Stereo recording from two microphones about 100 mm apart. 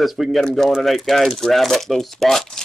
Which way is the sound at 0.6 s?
Centre (ahead or behind).